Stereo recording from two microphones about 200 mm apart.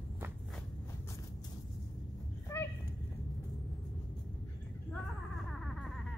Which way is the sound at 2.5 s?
15° left (ahead or behind).